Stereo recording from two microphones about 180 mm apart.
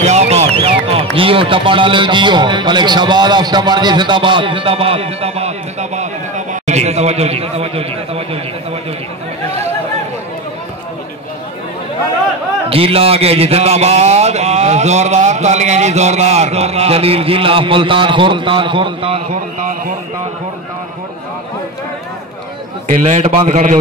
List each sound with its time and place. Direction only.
0.0 s speech: 40° right (ahead or behind)
12.6 s a man's voice: 30° right (ahead or behind)
23.0 s a man's voice: 40° right (ahead or behind)